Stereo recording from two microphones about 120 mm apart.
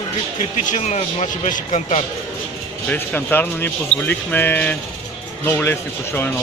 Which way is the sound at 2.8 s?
15° left (ahead or behind).